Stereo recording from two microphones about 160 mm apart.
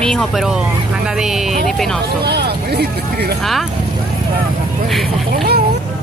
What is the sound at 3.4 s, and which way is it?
Speech, centre (ahead or behind).